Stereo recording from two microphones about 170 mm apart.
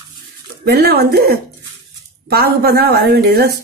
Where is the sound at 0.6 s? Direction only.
70° right (ahead or behind).